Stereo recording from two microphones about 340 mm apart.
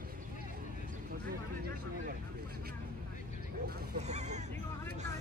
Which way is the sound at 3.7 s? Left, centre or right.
Right.